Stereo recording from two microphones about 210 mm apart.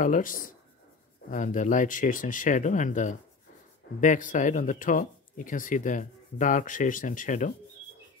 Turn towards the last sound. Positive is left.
turn(degrees=40)  # may be behind; listen again after turning